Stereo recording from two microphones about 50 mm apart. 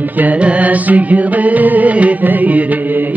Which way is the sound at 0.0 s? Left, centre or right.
Right.